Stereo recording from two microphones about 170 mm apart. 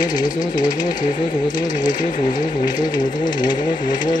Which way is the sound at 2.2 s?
25° left (ahead or behind).